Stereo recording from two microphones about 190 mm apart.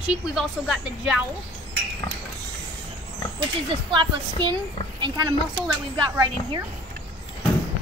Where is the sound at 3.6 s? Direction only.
25° right (ahead or behind).